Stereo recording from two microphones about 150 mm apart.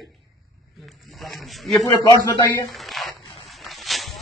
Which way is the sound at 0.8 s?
Centre (ahead or behind).